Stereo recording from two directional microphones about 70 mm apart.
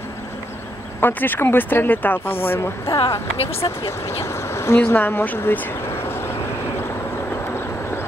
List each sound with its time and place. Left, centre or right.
1.0 s speech: left
2.6 s speech: left
4.2 s a sound: left
4.7 s speech: left